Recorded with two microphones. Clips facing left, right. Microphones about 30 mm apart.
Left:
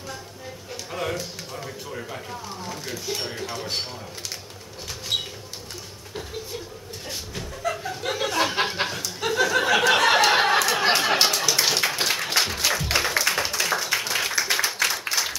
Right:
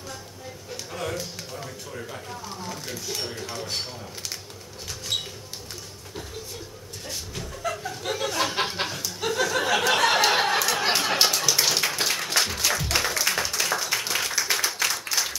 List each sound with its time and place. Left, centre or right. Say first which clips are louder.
0.7 s music: left 3 dB; centre
1.1 s speech: left 1 dB; centre
5.1 s a sound: left 2 dB; centre
7.1 s chuckle: left 1 dB; centre
13.2 s clapping: left 2 dB; centre